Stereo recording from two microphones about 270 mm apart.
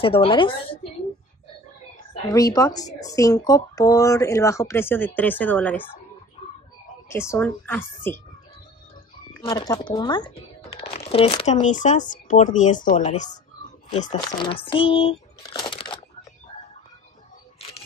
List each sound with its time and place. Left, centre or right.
0.0 s speech: centre
2.2 s speech: centre
7.1 s speech: centre
9.4 s speech: centre
17.6 s a sound: left